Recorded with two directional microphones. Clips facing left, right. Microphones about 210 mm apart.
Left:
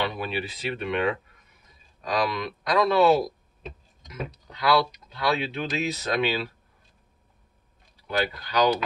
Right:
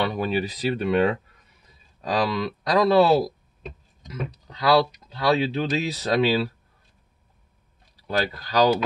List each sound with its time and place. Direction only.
0.0 s speech: 40° right (ahead or behind)
4.5 s speech: 30° right (ahead or behind)
7.9 s speech: 40° right (ahead or behind)